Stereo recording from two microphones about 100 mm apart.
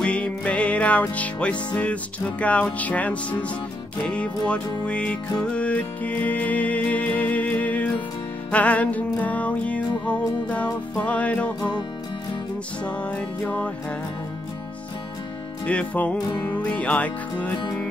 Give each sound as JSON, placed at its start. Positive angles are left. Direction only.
{"t": 0.0, "sound": "music", "side_deg": 10}
{"t": 12.8, "sound": "music", "side_deg": 15}
{"t": 15.6, "sound": "music", "side_deg": 15}
{"t": 16.2, "sound": "music", "side_deg": 45}
{"t": 16.6, "sound": "music", "side_deg": 10}